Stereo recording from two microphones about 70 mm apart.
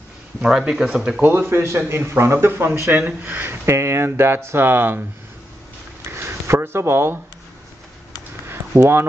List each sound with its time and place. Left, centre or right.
0.4 s speech: centre
1.2 s speech: right
3.0 s speech: centre
3.3 s speech: right
6.0 s a sound: right
8.5 s a sound: right